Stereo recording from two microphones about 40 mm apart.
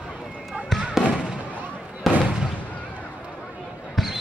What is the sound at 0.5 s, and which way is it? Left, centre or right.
Fireworks, right.